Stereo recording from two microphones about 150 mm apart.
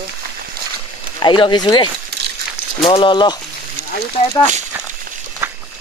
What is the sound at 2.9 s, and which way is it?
Speech, 35° left (ahead or behind).